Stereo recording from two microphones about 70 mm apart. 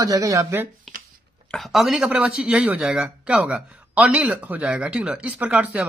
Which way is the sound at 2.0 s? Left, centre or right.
Centre.